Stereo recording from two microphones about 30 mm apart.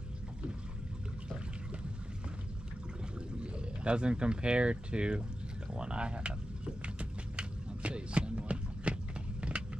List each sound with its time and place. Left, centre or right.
3.5 s speech: right
7.3 s a sound: right
9.5 s vehicle: right